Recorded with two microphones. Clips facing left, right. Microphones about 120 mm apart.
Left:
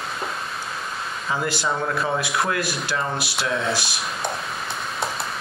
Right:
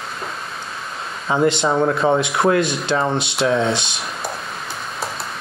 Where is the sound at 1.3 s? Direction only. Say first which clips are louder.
Right 8 dB; 25° right (ahead or behind).